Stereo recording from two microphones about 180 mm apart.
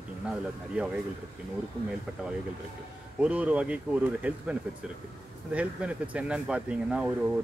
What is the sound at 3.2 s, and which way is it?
Speech, 5° right (ahead or behind).